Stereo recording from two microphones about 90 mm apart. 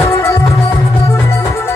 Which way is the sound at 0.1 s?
30° left (ahead or behind).